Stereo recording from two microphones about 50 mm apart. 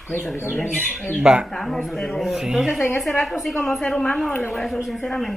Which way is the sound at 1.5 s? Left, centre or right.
Centre.